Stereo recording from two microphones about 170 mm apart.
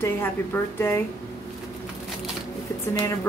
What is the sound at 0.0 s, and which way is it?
A woman's voice, 15° left (ahead or behind).